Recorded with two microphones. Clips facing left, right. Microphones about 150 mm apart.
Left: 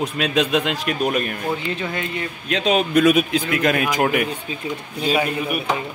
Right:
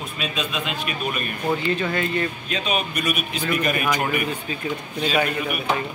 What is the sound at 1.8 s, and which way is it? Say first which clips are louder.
Speech: right 3 dB; 15° left (ahead or behind).